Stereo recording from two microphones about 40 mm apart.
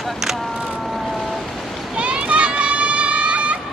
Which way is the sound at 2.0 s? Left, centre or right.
Right.